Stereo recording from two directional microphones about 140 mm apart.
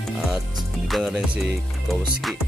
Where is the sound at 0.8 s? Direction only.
Centre (ahead or behind).